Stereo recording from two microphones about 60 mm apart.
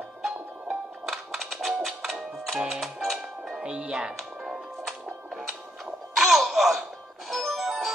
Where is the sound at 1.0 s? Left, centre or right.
Centre.